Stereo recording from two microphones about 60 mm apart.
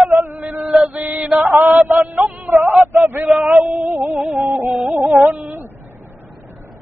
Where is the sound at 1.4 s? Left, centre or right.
Right.